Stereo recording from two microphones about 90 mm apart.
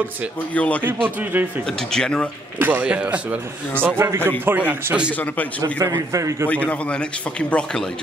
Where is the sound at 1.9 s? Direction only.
10° left (ahead or behind).